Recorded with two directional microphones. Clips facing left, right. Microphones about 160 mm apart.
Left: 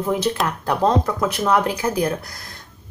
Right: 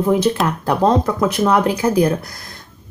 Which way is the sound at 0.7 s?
30° right (ahead or behind).